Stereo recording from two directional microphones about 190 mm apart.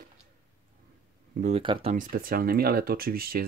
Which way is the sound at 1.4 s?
30° right (ahead or behind).